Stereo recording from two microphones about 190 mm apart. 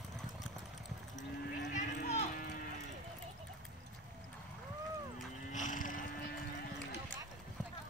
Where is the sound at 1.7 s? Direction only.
35° left (ahead or behind).